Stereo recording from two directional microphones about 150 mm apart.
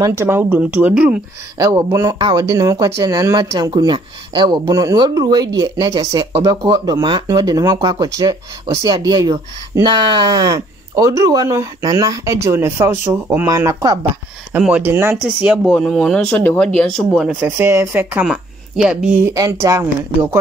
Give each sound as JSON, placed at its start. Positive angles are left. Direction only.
{"t": 0.0, "sound": "a woman's voice", "side_deg": -15}
{"t": 1.6, "sound": "a woman's voice", "side_deg": -20}
{"t": 15.6, "sound": "speech", "side_deg": 0}
{"t": 17.4, "sound": "a woman's voice", "side_deg": -15}
{"t": 19.3, "sound": "speech", "side_deg": -20}